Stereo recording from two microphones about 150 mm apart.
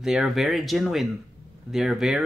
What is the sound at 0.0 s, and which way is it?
Speech, centre (ahead or behind).